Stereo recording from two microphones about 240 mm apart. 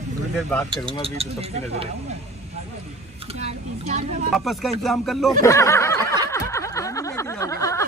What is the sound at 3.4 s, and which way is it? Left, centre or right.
Vehicle, right.